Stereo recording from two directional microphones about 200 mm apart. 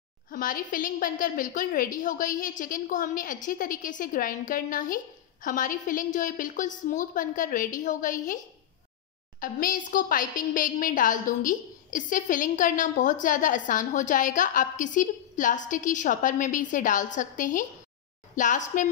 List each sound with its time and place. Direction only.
0.3 s a woman's voice: 45° left (ahead or behind)
9.4 s a woman's voice: 45° left (ahead or behind)